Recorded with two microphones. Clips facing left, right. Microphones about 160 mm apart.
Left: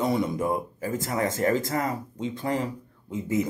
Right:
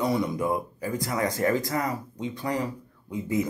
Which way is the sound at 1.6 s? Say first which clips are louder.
Left 1 dB; 25° left (ahead or behind).